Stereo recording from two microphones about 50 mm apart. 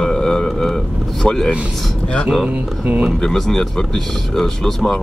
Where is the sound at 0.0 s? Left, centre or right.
Centre.